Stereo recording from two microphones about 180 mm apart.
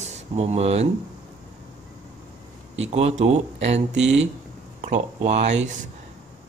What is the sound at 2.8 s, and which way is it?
Speech, 35° right (ahead or behind).